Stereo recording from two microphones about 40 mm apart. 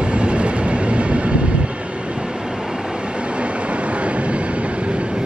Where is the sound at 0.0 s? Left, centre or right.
Right.